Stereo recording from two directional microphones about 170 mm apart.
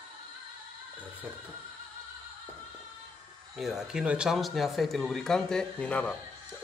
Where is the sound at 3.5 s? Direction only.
Centre (ahead or behind).